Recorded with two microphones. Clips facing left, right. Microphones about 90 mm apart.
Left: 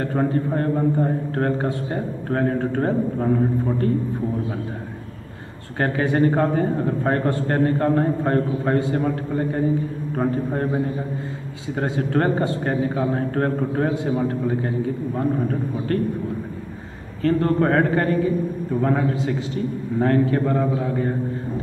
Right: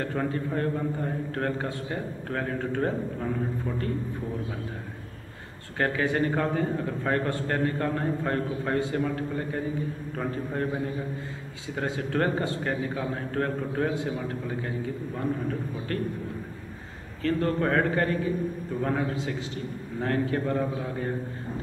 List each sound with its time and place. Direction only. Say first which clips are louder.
0.0 s a man's voice: left 7 dB; 40° left (ahead or behind)
5.8 s a man's voice: left 6 dB; 40° left (ahead or behind)
11.8 s a man's voice: left 6 dB; 40° left (ahead or behind)
17.2 s a man's voice: left 7 dB; 35° left (ahead or behind); by 21.1 s 55° left (ahead or behind)